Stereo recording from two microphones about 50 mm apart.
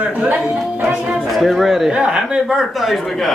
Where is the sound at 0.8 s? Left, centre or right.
Right.